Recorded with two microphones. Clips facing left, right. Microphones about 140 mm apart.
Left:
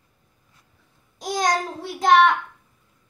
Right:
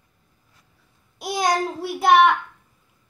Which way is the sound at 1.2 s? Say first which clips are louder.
Right 1 dB; 10° right (ahead or behind).